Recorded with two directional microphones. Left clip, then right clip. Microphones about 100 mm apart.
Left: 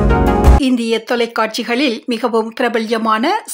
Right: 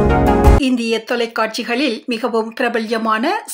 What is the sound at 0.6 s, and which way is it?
Speech, 40° left (ahead or behind).